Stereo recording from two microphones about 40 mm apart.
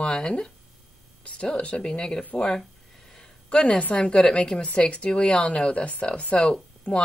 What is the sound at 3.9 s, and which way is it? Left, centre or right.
Speech, left.